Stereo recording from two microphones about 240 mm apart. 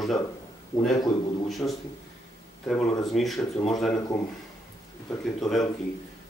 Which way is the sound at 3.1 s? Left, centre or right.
Centre.